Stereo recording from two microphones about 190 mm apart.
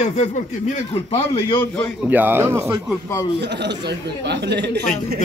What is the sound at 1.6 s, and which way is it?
Speech, 10° left (ahead or behind).